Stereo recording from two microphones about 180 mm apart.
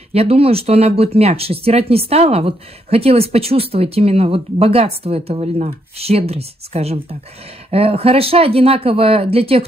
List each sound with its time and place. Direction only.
0.1 s speech: 35° right (ahead or behind)